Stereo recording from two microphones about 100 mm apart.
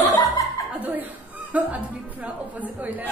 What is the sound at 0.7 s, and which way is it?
Chuckle, 20° right (ahead or behind).